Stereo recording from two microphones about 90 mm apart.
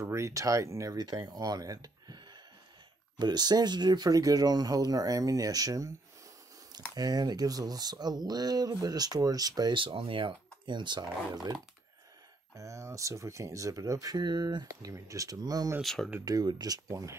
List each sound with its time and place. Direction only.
0.0 s speech: 30° right (ahead or behind)
0.9 s speech: 45° right (ahead or behind)
7.0 s speech: 45° right (ahead or behind)
9.8 s speech: 70° right (ahead or behind); by 11.5 s 55° right (ahead or behind)
12.5 s speech: 35° right (ahead or behind)
14.1 s speech: 55° right (ahead or behind)
14.7 s speech: 40° right (ahead or behind)
15.8 s speech: 5° left (ahead or behind)
16.3 s speech: 50° right (ahead or behind)